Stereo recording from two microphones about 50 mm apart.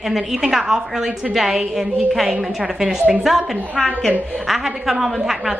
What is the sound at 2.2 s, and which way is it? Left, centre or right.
Speech, centre.